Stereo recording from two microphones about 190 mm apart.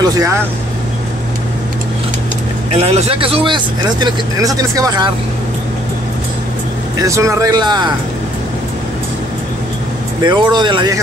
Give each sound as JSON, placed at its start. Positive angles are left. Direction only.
{"t": 0.0, "sound": "speech", "side_deg": -15}
{"t": 2.7, "sound": "speech", "side_deg": -30}
{"t": 7.0, "sound": "speech", "side_deg": -15}
{"t": 10.2, "sound": "speech", "side_deg": -25}